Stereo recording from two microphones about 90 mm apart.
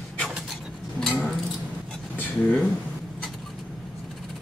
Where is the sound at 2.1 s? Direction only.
20° left (ahead or behind).